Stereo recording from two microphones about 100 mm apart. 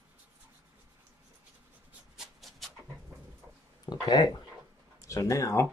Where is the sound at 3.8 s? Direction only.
45° left (ahead or behind).